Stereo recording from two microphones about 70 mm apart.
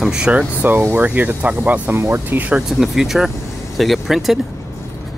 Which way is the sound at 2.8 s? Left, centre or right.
Centre.